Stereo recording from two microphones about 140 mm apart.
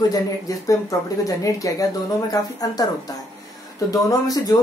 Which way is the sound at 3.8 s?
25° left (ahead or behind).